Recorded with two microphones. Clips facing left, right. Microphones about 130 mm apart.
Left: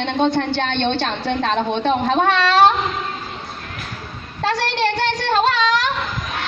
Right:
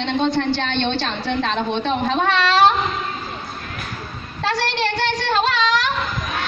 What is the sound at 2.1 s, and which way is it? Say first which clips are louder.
Speech: even; 50° left (ahead or behind).